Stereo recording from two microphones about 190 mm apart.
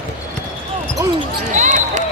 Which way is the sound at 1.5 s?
40° right (ahead or behind).